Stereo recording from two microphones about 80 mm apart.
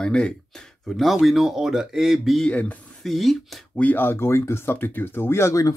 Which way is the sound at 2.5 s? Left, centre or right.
Centre.